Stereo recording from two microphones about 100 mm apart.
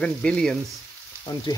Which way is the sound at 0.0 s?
10° left (ahead or behind).